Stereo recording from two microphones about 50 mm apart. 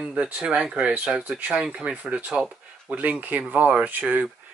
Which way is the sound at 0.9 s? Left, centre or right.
Right.